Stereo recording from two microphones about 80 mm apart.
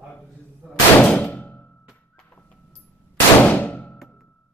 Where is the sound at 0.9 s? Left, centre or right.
Centre.